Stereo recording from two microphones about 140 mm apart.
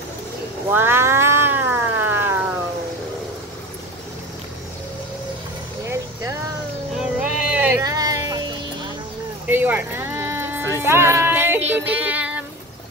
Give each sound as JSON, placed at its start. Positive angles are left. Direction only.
{"t": 0.7, "sound": "cat", "side_deg": -15}
{"t": 7.0, "sound": "vehicle", "side_deg": -10}
{"t": 7.8, "sound": "music", "side_deg": -25}
{"t": 9.5, "sound": "a sound", "side_deg": -15}